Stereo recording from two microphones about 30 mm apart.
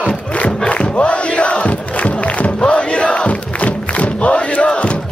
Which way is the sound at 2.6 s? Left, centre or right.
Left.